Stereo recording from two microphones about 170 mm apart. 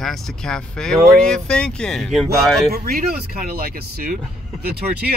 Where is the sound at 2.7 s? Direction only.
65° right (ahead or behind).